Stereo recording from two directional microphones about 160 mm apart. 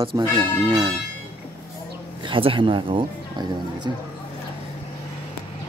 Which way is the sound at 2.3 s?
35° right (ahead or behind).